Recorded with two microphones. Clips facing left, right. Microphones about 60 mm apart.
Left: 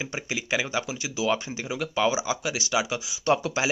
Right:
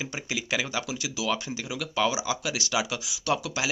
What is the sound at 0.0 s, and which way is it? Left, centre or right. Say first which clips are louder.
Speech: left 1 dB; left.